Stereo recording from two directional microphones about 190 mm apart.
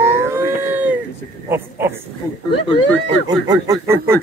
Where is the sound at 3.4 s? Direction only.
20° right (ahead or behind).